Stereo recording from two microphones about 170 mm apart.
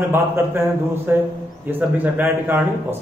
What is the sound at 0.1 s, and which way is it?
Speech, 15° right (ahead or behind).